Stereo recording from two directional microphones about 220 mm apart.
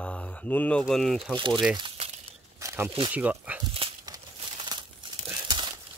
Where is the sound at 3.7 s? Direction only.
20° right (ahead or behind).